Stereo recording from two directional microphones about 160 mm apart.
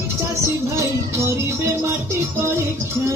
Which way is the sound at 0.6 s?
20° right (ahead or behind).